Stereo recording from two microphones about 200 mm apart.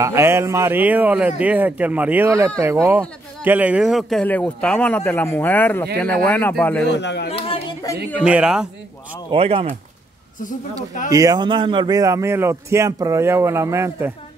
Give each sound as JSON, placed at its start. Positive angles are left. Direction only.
{"t": 0.0, "sound": "speech", "side_deg": -15}
{"t": 6.9, "sound": "speech", "side_deg": 60}
{"t": 7.2, "sound": "speech", "side_deg": 30}
{"t": 8.2, "sound": "speech", "side_deg": -5}
{"t": 9.3, "sound": "speech", "side_deg": -30}
{"t": 11.1, "sound": "speech", "side_deg": -15}